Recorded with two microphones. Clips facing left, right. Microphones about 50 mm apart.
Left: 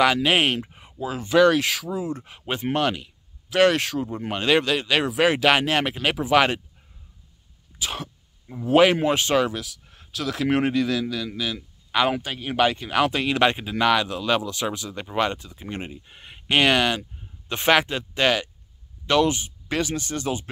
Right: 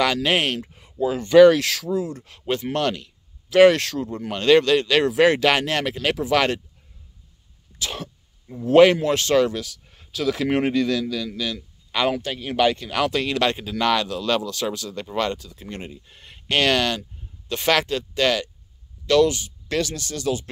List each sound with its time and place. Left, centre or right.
0.0 s speech: centre
0.6 s a sound: left
0.9 s speech: centre
2.7 s a sound: centre
3.7 s speech: centre
7.8 s speech: centre
8.5 s speech: centre